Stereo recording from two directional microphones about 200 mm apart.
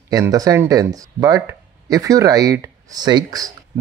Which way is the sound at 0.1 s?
15° right (ahead or behind).